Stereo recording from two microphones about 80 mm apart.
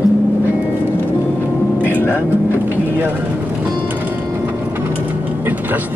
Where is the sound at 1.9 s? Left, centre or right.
Left.